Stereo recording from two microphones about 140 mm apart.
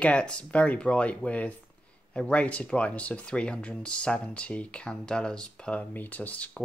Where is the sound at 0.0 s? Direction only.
10° left (ahead or behind).